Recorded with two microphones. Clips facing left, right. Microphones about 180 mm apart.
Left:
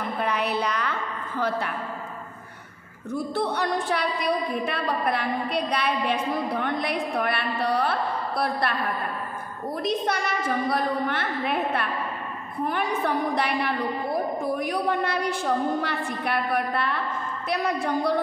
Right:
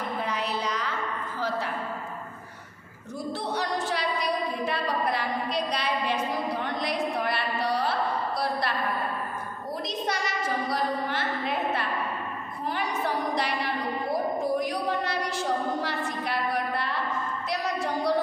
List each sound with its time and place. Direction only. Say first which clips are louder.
0.2 s a sound: left 6 dB; 60° left (ahead or behind)
1.4 s a woman's voice: left 3 dB; 60° left (ahead or behind)
3.1 s a woman's voice: left 5 dB; 55° left (ahead or behind)
9.8 s a woman's voice: left 6 dB; 55° left (ahead or behind)